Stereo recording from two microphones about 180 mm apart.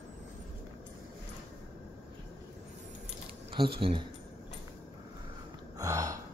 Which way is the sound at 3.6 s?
30° right (ahead or behind).